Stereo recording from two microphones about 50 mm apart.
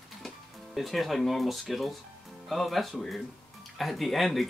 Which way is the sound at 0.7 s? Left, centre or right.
Centre.